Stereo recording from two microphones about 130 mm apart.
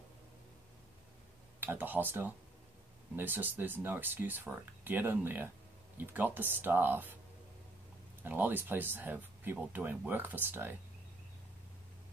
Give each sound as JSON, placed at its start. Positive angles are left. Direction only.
{"t": 1.6, "sound": "speech", "side_deg": -15}
{"t": 8.2, "sound": "speech", "side_deg": -15}